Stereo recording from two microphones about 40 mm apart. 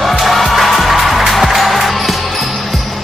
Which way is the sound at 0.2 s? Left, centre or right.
Centre.